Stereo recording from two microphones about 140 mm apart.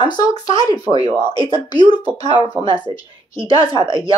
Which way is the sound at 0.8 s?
45° right (ahead or behind).